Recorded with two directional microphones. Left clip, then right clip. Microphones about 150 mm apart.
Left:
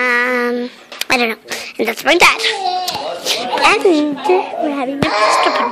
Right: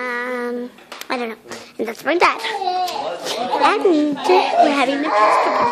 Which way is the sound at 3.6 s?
15° left (ahead or behind).